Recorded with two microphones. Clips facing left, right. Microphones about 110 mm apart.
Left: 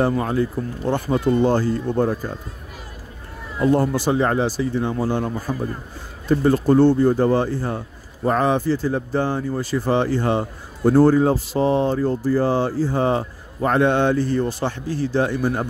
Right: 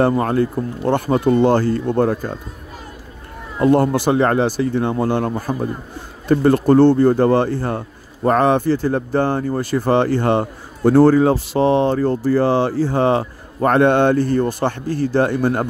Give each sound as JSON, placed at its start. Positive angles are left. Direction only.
{"t": 0.0, "sound": "speech", "side_deg": -60}
{"t": 3.6, "sound": "speech", "side_deg": -60}